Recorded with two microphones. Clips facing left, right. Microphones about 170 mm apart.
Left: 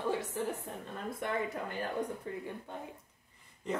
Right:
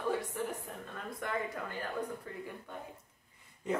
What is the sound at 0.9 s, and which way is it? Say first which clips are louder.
Speech: left 2 dB; 25° left (ahead or behind).